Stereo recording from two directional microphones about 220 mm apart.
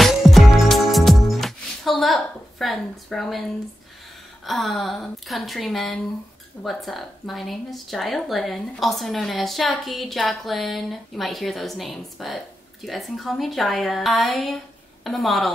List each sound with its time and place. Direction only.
0.0 s music: centre (ahead or behind)
4.5 s speech: centre (ahead or behind)